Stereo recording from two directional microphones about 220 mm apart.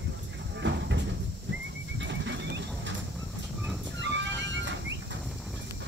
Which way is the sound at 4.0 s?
55° right (ahead or behind).